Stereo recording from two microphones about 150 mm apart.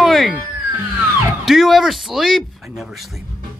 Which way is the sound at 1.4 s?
Centre (ahead or behind).